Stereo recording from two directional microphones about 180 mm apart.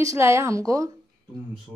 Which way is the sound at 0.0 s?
15° right (ahead or behind).